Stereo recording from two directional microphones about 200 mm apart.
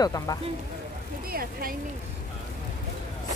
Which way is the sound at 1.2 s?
50° right (ahead or behind).